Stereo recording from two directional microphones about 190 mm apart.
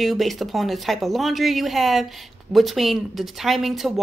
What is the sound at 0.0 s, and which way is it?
Speech, centre (ahead or behind).